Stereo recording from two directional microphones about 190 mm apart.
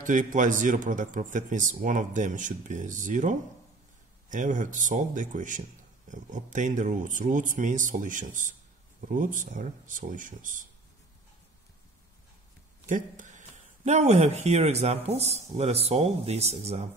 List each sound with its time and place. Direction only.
0.0 s speech: 45° right (ahead or behind)
12.8 s speech: 40° right (ahead or behind)